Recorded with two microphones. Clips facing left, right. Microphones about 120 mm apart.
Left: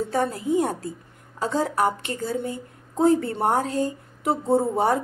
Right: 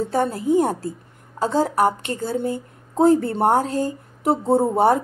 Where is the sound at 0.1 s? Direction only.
35° right (ahead or behind).